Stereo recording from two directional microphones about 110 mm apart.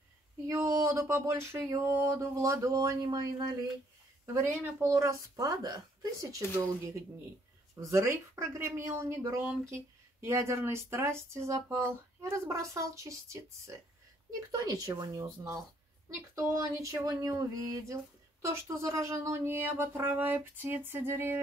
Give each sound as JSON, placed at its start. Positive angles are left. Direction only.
{"t": 0.5, "sound": "speech", "side_deg": -25}
{"t": 4.3, "sound": "speech", "side_deg": -25}